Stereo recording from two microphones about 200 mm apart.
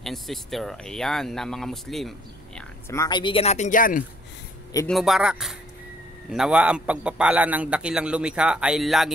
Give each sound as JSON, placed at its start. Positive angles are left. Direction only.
{"t": 0.0, "sound": "a man's voice", "side_deg": 0}
{"t": 2.9, "sound": "speech", "side_deg": 20}
{"t": 4.8, "sound": "a man's voice", "side_deg": 0}